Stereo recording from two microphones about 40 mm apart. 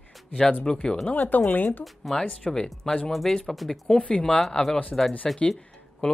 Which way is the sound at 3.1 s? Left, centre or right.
Centre.